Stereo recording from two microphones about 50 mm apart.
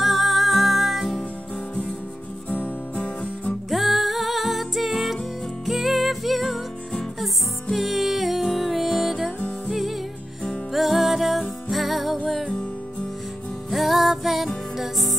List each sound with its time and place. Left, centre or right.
0.0 s music: centre
2.5 s music: left
3.7 s music: centre
7.7 s music: centre
13.7 s music: centre